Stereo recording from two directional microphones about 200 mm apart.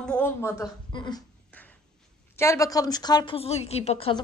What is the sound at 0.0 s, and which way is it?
Speech, 5° left (ahead or behind).